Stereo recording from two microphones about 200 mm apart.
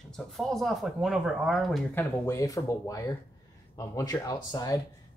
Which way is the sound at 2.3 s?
15° left (ahead or behind).